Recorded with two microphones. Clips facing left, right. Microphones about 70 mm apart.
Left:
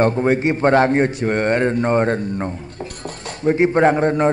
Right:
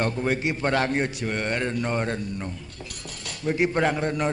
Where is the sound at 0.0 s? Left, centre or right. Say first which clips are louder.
Left 9 dB; left.